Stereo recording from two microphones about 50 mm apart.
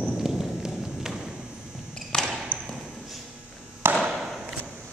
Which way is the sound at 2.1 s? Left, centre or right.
Left.